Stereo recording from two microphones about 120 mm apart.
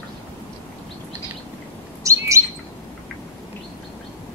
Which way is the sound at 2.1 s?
25° right (ahead or behind).